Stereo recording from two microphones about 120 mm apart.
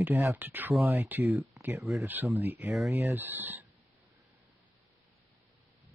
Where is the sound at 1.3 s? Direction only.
Centre (ahead or behind).